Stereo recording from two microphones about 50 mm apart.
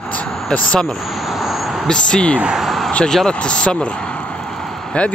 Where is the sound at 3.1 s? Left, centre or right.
Centre.